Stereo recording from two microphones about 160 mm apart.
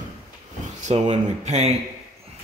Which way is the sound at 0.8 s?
45° right (ahead or behind).